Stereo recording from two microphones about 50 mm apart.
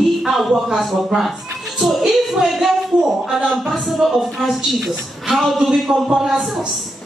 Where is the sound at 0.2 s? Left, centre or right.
Centre.